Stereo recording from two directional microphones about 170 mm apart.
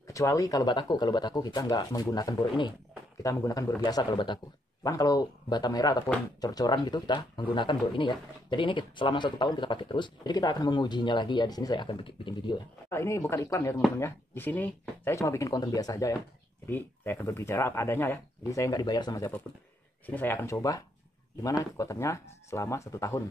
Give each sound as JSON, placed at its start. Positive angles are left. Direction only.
{"t": 0.0, "sound": "speech", "side_deg": 20}
{"t": 12.9, "sound": "speech", "side_deg": 15}